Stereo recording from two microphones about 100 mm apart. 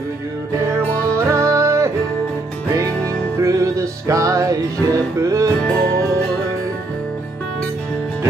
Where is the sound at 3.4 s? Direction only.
30° right (ahead or behind).